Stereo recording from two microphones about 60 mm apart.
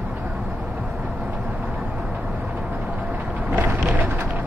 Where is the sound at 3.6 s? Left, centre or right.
Right.